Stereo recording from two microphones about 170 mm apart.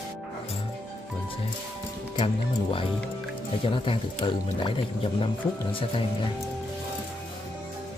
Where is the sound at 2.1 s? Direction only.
30° left (ahead or behind).